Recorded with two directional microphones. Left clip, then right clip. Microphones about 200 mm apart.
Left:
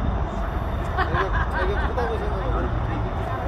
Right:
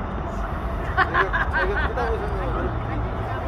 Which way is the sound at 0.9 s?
45° right (ahead or behind).